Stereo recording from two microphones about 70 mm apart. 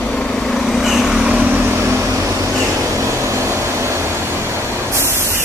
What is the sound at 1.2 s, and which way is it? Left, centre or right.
Vehicle, centre.